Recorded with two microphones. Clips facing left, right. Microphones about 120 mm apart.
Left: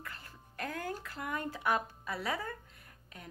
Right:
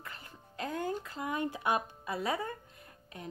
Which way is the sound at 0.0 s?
20° right (ahead or behind).